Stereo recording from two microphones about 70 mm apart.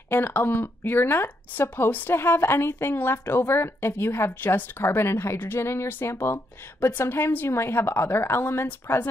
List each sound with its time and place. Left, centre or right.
0.1 s speech: left